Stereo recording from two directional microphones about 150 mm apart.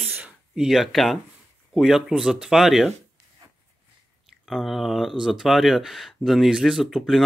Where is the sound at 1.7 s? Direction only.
Centre (ahead or behind).